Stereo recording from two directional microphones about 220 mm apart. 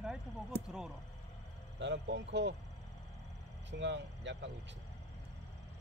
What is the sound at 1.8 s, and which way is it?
Speech, 55° right (ahead or behind).